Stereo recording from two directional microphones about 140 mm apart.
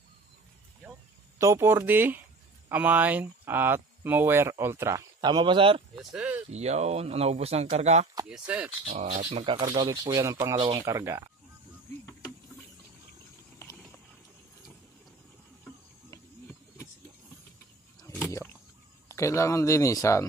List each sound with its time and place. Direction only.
1.4 s speech: 20° right (ahead or behind)
5.2 s speech: 35° right (ahead or behind)
6.1 s speech: 10° right (ahead or behind)
6.5 s speech: 50° right (ahead or behind)
8.3 s speech: 10° right (ahead or behind)
8.8 s speech: 50° right (ahead or behind)
9.4 s speech: 30° right (ahead or behind)
13.6 s clip-clop: 20° left (ahead or behind)
19.0 s speech: 20° left (ahead or behind)